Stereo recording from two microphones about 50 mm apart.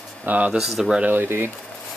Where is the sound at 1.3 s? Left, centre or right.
Right.